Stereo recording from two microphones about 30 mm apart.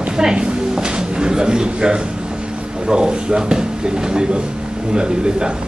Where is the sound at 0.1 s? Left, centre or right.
Right.